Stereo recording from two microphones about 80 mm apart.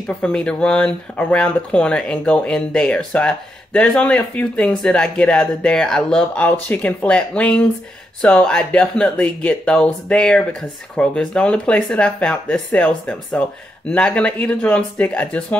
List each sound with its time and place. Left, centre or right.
0.2 s speech: centre
6.7 s speech: centre